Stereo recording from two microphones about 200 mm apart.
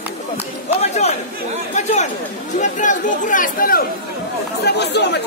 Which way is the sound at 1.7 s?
35° left (ahead or behind).